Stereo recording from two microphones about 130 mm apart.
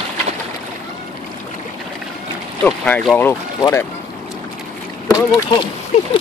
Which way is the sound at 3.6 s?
20° left (ahead or behind).